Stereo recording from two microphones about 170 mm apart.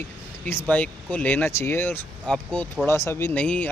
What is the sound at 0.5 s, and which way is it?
Speech, 10° left (ahead or behind).